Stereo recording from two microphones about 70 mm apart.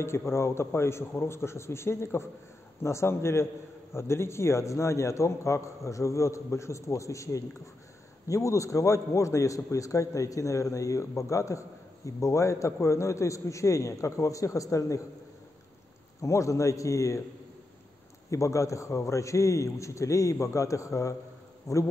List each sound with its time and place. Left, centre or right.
0.0 s a man's voice: left
16.2 s a man's voice: left
18.3 s a man's voice: left